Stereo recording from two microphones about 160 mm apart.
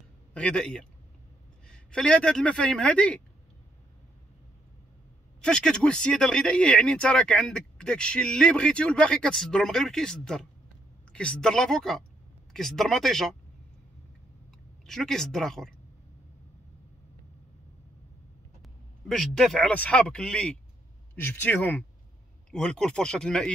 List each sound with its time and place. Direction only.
0.3 s speech: 5° left (ahead or behind)
5.4 s speech: 5° left (ahead or behind)
14.9 s speech: centre (ahead or behind)
18.6 s speech: centre (ahead or behind)